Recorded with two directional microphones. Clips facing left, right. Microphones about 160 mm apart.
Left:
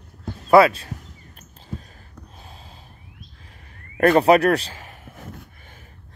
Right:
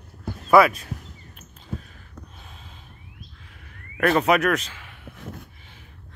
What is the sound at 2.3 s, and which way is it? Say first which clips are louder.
Gasp: left 2 dB; 35° left (ahead or behind).